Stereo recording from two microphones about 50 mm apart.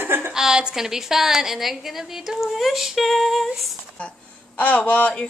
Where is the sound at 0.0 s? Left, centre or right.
Right.